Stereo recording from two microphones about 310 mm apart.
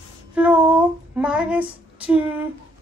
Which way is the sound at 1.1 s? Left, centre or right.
Centre.